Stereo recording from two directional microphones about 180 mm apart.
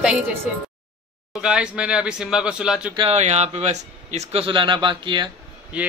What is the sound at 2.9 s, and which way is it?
Speech, 35° right (ahead or behind).